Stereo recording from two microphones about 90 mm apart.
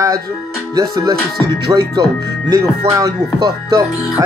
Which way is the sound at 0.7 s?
45° right (ahead or behind).